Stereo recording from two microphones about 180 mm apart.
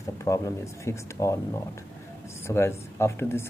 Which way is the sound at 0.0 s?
15° left (ahead or behind).